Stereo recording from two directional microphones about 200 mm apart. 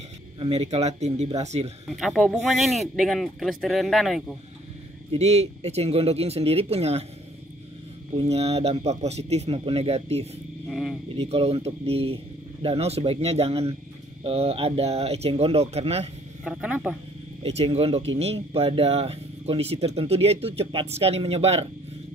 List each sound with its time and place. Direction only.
0.4 s speech: 30° right (ahead or behind)
1.9 s speech: centre (ahead or behind)
5.1 s speech: 30° right (ahead or behind)
8.1 s speech: 30° right (ahead or behind)
10.7 s speech: centre (ahead or behind)
11.1 s speech: 30° right (ahead or behind)
16.4 s speech: 5° right (ahead or behind)
17.4 s speech: 30° right (ahead or behind)